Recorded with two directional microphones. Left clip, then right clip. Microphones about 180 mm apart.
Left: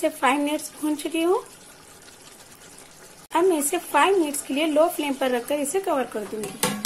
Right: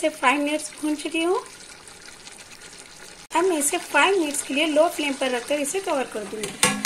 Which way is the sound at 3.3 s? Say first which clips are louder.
Left 1 dB; 10° left (ahead or behind).